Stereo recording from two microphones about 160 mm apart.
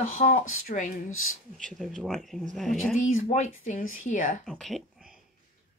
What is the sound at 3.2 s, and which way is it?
Speech, 45° left (ahead or behind).